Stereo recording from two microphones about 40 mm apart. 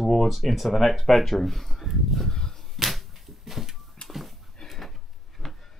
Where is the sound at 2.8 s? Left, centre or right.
Centre.